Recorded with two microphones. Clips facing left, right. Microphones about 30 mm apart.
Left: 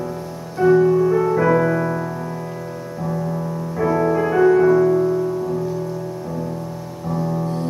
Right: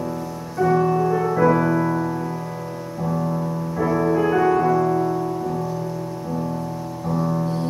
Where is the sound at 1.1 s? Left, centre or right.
Centre.